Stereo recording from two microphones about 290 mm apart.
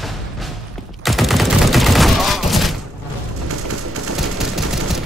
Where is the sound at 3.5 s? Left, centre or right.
Right.